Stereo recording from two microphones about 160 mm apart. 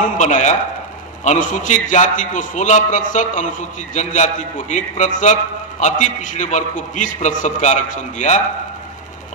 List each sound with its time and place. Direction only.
0.0 s a man's voice: 50° left (ahead or behind)